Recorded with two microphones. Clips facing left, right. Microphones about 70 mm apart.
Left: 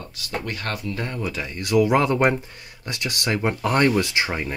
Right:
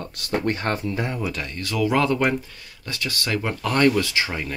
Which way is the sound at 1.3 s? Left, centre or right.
Centre.